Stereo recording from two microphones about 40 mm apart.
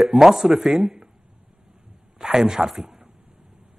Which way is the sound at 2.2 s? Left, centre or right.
Centre.